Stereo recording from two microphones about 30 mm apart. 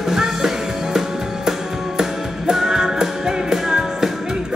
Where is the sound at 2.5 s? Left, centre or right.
Centre.